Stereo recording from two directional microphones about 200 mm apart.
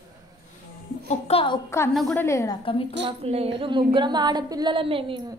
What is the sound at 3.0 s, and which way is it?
A woman's voice, 30° right (ahead or behind).